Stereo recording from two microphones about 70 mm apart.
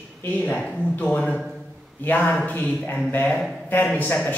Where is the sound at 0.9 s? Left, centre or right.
Centre.